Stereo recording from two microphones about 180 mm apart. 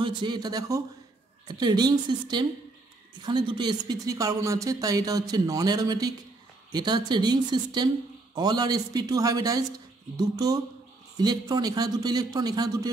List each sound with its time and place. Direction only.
0.0 s speech: 25° right (ahead or behind)